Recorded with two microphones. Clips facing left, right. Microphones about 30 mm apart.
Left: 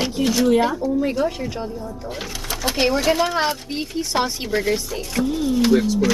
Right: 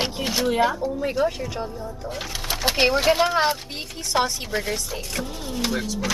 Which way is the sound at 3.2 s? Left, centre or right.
Centre.